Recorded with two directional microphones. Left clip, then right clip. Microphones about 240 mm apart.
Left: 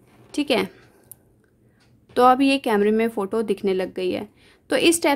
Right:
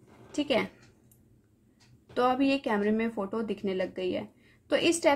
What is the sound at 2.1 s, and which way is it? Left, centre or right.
Speech, left.